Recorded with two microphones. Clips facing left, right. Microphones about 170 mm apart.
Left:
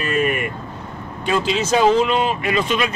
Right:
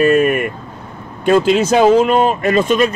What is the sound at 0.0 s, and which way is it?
Vehicle, 45° right (ahead or behind).